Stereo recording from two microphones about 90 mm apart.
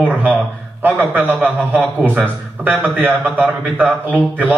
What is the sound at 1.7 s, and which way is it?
Speech, 5° right (ahead or behind).